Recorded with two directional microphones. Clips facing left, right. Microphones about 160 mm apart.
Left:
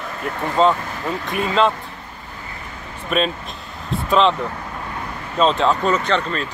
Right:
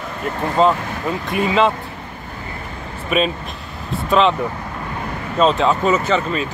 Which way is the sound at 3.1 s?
5° right (ahead or behind).